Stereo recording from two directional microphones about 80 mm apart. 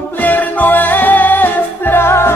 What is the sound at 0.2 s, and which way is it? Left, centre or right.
Music, left.